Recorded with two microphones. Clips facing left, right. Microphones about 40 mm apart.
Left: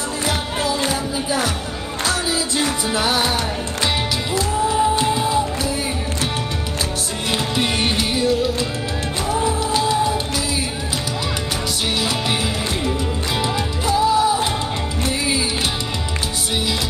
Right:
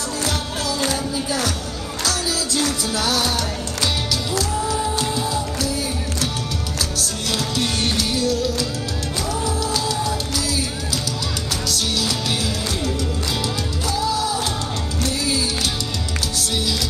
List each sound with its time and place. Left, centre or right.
0.7 s music: left
7.0 s music: left
13.4 s music: left